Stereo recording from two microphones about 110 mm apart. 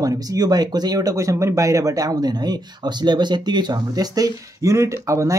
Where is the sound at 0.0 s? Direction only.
35° right (ahead or behind).